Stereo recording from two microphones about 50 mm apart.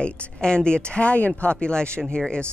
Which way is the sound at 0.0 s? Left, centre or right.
Centre.